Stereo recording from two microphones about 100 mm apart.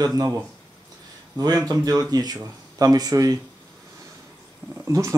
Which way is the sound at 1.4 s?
40° right (ahead or behind).